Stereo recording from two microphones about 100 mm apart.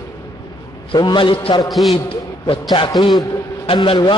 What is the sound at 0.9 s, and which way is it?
Speech, 50° left (ahead or behind).